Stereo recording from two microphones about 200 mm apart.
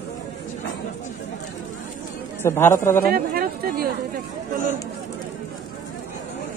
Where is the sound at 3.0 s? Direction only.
50° right (ahead or behind).